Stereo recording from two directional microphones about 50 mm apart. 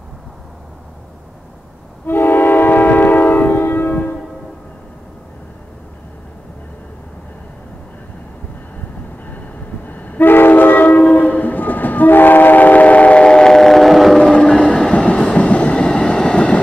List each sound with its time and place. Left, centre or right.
2.0 s train: left
9.8 s train: left; by 14.3 s centre
14.8 s train: centre